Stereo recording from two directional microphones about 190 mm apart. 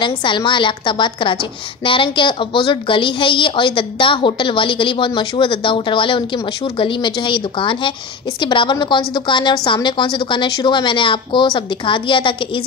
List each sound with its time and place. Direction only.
0.0 s a woman's voice: 25° left (ahead or behind)